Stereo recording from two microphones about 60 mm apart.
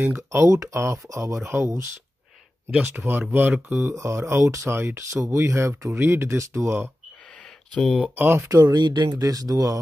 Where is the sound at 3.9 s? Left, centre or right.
Right.